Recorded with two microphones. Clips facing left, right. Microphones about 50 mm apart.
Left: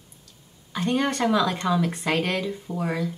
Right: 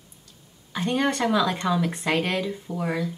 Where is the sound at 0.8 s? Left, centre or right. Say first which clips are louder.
Even; centre.